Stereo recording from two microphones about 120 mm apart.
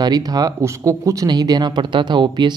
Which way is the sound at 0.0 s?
35° right (ahead or behind).